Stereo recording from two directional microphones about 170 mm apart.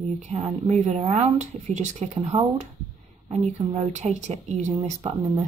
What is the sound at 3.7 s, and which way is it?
Speech, 40° right (ahead or behind).